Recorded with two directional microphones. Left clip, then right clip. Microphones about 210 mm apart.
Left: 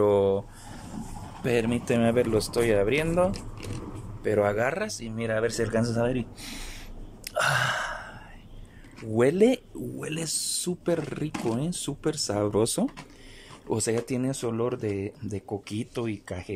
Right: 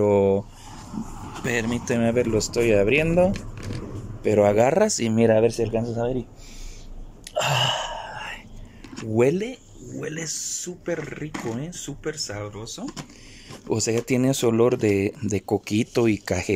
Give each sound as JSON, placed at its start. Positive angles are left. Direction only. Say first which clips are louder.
{"t": 0.0, "sound": "a sound", "louder": "right 3 dB", "side_deg": -5}
{"t": 1.4, "sound": "a man's voice", "louder": "even", "side_deg": 10}
{"t": 4.6, "sound": "speech", "louder": "right 9 dB", "side_deg": -20}
{"t": 4.8, "sound": "speech", "louder": "right 13 dB", "side_deg": -40}
{"t": 5.5, "sound": "speech", "louder": "right 3 dB", "side_deg": 0}
{"t": 5.9, "sound": "a man's voice", "louder": "right 1 dB", "side_deg": 30}
{"t": 7.2, "sound": "gasp", "louder": "right 2 dB", "side_deg": -5}
{"t": 9.1, "sound": "speech", "louder": "even", "side_deg": 0}
{"t": 10.2, "sound": "speech", "louder": "even", "side_deg": 20}
{"t": 12.4, "sound": "speech", "louder": "left 11 dB", "side_deg": 40}
{"t": 13.7, "sound": "speech", "louder": "right 4 dB", "side_deg": -5}